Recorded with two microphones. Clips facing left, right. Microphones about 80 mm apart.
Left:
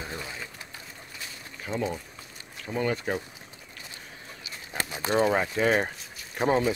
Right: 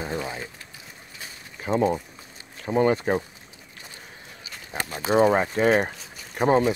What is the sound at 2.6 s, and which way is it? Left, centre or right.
Speech, right.